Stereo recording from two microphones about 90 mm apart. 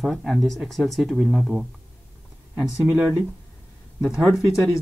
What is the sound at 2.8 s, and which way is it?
Speech, 25° right (ahead or behind).